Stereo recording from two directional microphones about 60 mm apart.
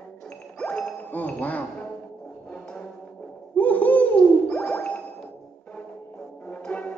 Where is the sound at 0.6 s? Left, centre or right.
Centre.